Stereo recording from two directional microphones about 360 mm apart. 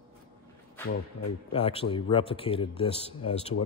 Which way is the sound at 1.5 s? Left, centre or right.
Centre.